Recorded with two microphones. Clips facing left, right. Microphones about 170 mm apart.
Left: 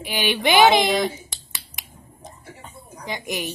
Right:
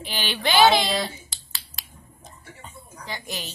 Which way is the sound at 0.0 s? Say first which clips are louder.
Left 5 dB; 15° left (ahead or behind).